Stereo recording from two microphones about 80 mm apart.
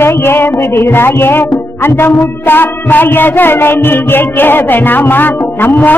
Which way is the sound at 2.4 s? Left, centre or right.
Left.